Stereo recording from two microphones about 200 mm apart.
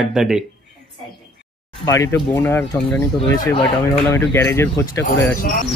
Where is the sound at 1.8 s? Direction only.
15° left (ahead or behind).